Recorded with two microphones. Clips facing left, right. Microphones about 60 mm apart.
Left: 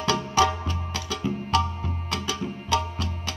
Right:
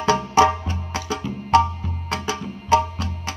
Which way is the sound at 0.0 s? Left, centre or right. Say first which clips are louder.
Right 6 dB; right.